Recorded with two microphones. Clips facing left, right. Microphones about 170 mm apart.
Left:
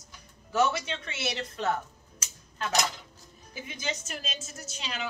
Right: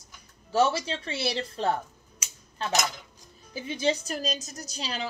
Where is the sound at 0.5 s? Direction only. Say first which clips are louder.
Right 3 dB; 30° right (ahead or behind).